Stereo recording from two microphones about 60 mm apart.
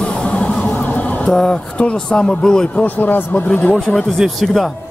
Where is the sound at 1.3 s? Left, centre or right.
Centre.